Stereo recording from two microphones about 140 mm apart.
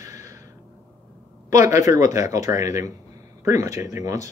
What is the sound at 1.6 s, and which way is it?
Speech, 20° right (ahead or behind).